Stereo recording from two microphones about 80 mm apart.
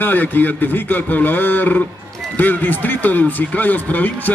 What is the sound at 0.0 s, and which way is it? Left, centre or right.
Speech, left.